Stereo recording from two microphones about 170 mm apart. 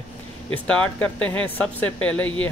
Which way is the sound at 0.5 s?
5° left (ahead or behind).